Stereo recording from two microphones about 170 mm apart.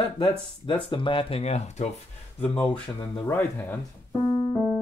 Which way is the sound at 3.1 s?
10° left (ahead or behind).